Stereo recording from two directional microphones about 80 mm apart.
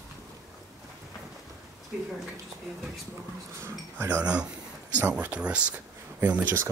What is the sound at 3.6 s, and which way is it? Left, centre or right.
Dishes, right.